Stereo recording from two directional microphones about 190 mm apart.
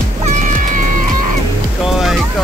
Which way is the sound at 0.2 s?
40° right (ahead or behind).